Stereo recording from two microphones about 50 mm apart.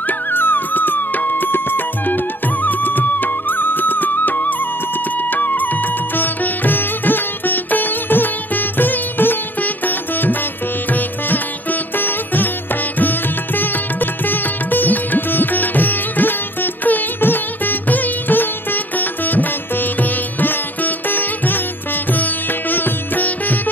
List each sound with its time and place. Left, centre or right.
0.3 s music: left
6.1 s sitar: left
10.9 s music: left
13.6 s music: left